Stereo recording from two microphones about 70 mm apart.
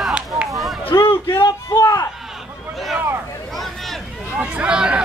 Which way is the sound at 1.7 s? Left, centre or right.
Left.